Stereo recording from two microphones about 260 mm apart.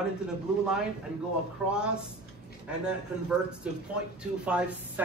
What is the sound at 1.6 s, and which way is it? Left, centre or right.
Speech, centre.